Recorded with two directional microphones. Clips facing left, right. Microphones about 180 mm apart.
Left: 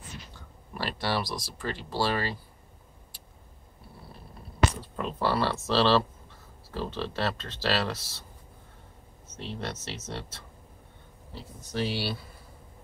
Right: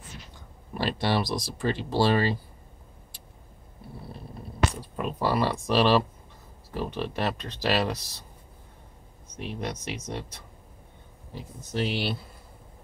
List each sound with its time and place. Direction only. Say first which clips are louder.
0.7 s speech: right 4 dB; 20° right (ahead or behind)
4.9 s speech: right 2 dB; 15° right (ahead or behind)
9.3 s speech: right 3 dB; 15° right (ahead or behind)